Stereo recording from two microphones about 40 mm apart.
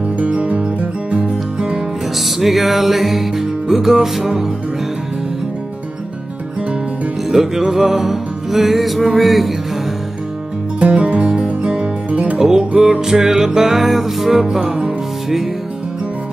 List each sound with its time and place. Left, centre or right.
0.2 s music: right
2.1 s music: centre
7.2 s music: centre
10.8 s music: right
12.4 s music: centre